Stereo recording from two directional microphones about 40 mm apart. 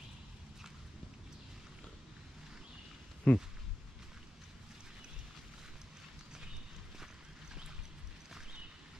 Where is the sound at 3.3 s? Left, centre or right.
Left.